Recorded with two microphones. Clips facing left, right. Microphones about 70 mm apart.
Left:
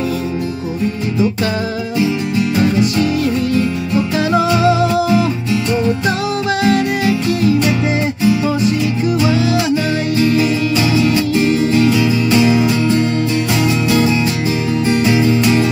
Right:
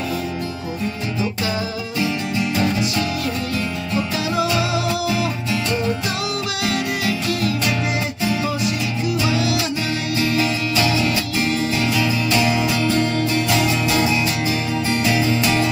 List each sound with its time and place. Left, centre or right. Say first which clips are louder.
4.6 s music: left 8 dB; left
6.6 s music: left 8 dB; left
10.3 s music: left 6 dB; left
15.0 s music: left 5 dB; centre